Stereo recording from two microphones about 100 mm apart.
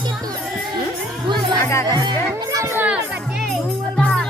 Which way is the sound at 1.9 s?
45° right (ahead or behind).